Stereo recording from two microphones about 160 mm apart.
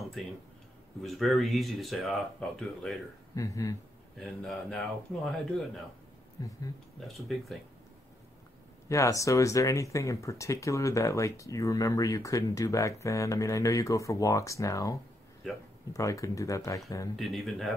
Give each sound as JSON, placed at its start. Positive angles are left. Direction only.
{"t": 0.0, "sound": "tick-tock", "side_deg": 0}
{"t": 1.0, "sound": "speech", "side_deg": 0}
{"t": 3.3, "sound": "speech", "side_deg": 20}
{"t": 4.2, "sound": "speech", "side_deg": 5}
{"t": 6.4, "sound": "speech", "side_deg": 20}
{"t": 7.1, "sound": "speech", "side_deg": 0}
{"t": 8.8, "sound": "speech", "side_deg": 20}
{"t": 17.2, "sound": "speech", "side_deg": 0}